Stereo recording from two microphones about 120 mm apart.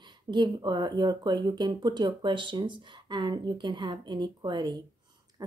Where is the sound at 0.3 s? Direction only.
40° right (ahead or behind).